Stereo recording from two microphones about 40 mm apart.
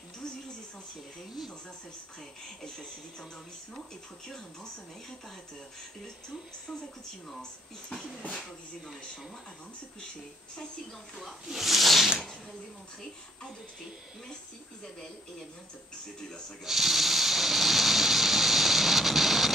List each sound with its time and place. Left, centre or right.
2.6 s speech: centre
7.9 s speech: centre
11.1 s speech: centre
16.2 s speech: centre
16.6 s a sound: centre